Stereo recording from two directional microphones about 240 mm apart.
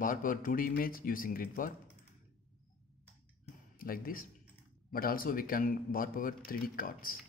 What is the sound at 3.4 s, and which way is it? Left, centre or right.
Music, left.